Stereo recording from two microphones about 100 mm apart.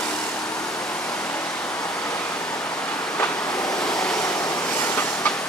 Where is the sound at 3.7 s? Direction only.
5° left (ahead or behind).